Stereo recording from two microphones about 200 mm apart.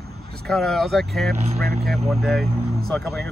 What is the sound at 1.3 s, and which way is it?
Speech, 30° right (ahead or behind).